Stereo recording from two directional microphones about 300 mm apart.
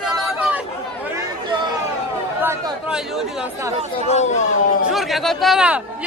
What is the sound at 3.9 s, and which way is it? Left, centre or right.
Speech, left.